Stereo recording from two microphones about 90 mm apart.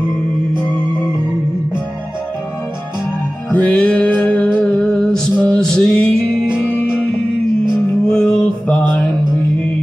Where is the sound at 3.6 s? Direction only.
10° left (ahead or behind).